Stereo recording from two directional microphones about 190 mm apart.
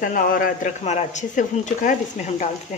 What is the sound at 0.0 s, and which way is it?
Speech, 45° left (ahead or behind).